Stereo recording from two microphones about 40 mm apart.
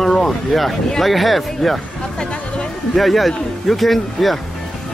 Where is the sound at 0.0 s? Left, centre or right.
Centre.